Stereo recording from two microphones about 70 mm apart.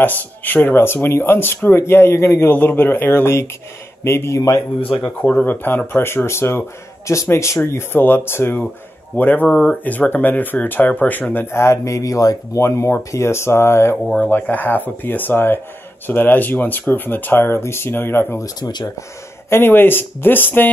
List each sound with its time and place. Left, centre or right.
0.0 s speech: left
2.5 s speech: left
5.0 s speech: left
9.1 s speech: left
9.5 s speech: centre
9.8 s speech: left
11.5 s speech: left
12.6 s speech: left
14.2 s speech: left
18.4 s speech: left
19.5 s speech: left